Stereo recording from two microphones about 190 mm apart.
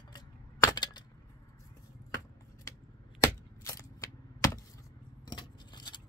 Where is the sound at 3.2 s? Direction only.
15° left (ahead or behind).